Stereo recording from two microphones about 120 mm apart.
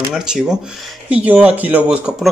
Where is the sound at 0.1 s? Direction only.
5° right (ahead or behind).